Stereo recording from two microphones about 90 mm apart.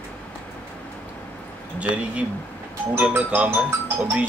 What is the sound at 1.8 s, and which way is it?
Speech, 15° right (ahead or behind).